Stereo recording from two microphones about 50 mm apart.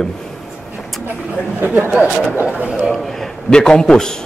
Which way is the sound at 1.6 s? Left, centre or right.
Right.